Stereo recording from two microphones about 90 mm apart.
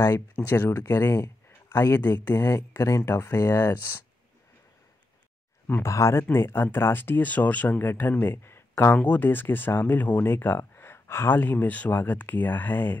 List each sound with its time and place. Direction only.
0.4 s speech: 25° left (ahead or behind)
2.7 s speech: 35° left (ahead or behind)
5.7 s speech: 30° left (ahead or behind)